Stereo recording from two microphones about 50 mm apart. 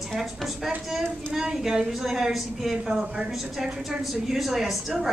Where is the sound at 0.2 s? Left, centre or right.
Centre.